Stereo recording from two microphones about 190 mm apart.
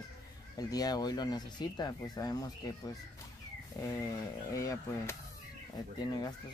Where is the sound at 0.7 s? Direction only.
20° left (ahead or behind).